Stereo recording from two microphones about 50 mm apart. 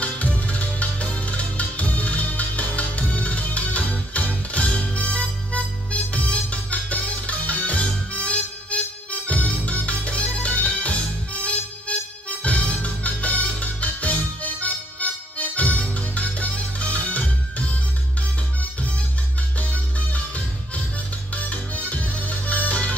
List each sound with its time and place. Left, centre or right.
0.0 s music: left
12.4 s music: left
19.7 s music: left